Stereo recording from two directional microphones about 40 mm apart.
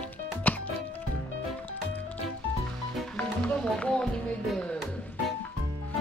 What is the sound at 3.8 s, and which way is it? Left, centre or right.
Music, left.